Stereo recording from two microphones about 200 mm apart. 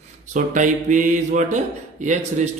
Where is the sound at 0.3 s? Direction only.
40° right (ahead or behind).